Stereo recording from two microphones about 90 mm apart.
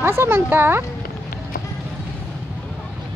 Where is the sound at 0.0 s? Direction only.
25° right (ahead or behind).